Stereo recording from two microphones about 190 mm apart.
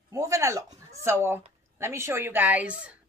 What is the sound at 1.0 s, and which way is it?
A woman's voice, 15° right (ahead or behind).